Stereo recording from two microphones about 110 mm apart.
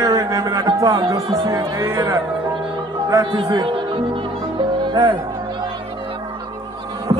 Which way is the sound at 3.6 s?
50° right (ahead or behind).